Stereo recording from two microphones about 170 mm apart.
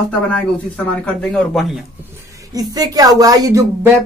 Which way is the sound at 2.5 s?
20° right (ahead or behind).